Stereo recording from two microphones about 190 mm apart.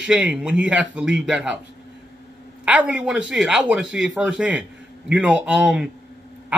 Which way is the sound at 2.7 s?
5° right (ahead or behind).